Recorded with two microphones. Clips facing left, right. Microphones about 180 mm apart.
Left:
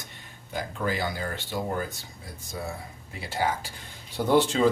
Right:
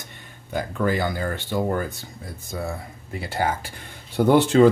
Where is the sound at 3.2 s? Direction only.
55° right (ahead or behind).